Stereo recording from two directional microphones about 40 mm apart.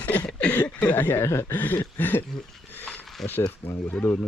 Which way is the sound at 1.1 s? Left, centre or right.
Left.